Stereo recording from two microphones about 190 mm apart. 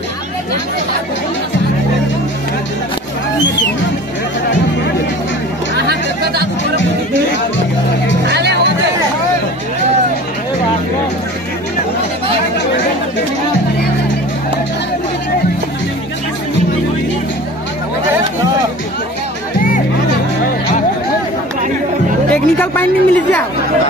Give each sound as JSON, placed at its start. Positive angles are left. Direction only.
{"t": 5.8, "sound": "chatter", "side_deg": -55}
{"t": 8.3, "sound": "music", "side_deg": -60}
{"t": 22.3, "sound": "a man's voice", "side_deg": 10}